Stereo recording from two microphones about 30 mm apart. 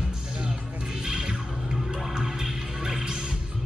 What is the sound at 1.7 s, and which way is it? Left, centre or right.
Music, centre.